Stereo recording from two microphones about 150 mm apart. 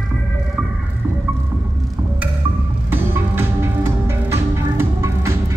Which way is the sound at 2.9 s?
15° right (ahead or behind).